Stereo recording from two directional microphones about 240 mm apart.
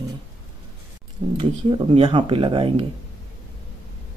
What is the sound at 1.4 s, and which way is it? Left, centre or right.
Speech, right.